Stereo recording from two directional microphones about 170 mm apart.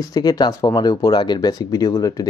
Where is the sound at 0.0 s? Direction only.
20° left (ahead or behind).